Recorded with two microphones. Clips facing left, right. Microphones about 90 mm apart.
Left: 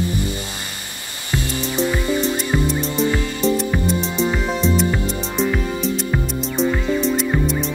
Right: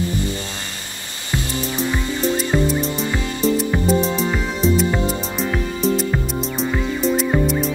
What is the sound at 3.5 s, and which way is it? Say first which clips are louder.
Music: right 2 dB; centre (ahead or behind).